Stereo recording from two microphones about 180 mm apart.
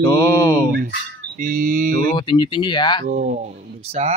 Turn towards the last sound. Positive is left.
turn(degrees=-35)  # may be behind; listen again after turning